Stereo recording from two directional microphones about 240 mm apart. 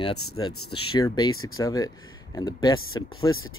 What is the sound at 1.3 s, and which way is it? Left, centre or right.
Speech, left.